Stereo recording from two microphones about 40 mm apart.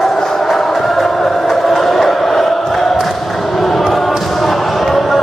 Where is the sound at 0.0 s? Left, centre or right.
Centre.